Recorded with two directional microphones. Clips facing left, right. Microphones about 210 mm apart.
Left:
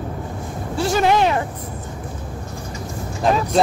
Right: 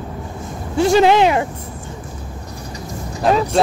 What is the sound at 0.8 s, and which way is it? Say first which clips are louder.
Speech: right 5 dB; 20° right (ahead or behind).